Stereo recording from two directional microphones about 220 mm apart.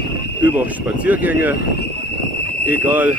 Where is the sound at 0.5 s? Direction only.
5° right (ahead or behind).